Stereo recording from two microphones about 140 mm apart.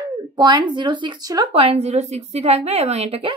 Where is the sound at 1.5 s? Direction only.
45° right (ahead or behind).